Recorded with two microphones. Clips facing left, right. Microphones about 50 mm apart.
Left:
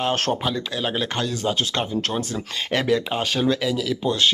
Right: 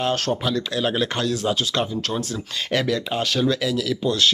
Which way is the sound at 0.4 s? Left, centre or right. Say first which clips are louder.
Right 2 dB; centre.